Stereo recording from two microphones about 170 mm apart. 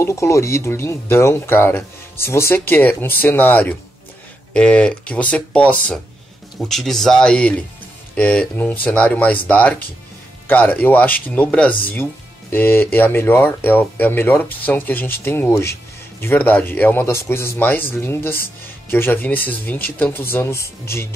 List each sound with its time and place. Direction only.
0.0 s speech: 15° left (ahead or behind)